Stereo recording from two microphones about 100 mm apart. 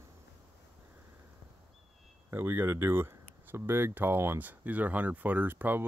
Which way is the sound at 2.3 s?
25° right (ahead or behind).